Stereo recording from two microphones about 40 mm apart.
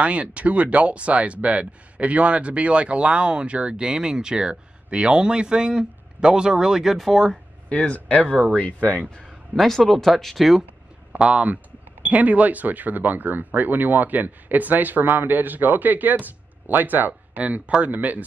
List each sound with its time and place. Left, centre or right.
0.0 s speech: right; by 7.0 s centre
7.0 s speech: centre
7.7 s speech: left
9.6 s speech: centre
11.1 s speech: right
17.4 s speech: right
17.8 s speech: right